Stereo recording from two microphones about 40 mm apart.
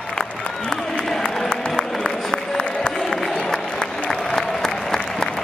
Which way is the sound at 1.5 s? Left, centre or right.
Centre.